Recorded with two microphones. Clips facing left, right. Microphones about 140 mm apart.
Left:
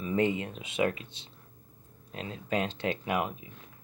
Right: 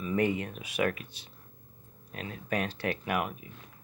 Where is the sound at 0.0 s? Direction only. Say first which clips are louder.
Left 1 dB; 25° left (ahead or behind).